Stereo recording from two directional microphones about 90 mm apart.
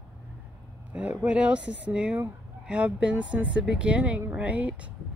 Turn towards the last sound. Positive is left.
turn(degrees=-15)  # may be behind; listen again after turning